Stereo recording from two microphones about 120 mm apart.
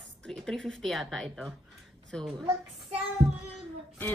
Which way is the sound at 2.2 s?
50° right (ahead or behind).